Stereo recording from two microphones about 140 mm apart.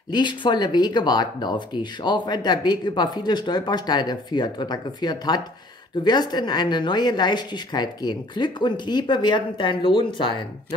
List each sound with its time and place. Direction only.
0.1 s speech: 35° left (ahead or behind)